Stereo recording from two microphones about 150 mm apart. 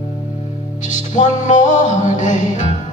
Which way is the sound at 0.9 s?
55° left (ahead or behind).